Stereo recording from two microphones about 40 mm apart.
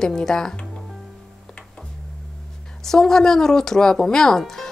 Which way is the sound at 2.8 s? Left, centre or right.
Centre.